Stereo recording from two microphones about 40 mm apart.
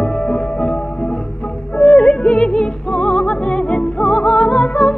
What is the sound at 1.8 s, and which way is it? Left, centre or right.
Music, left.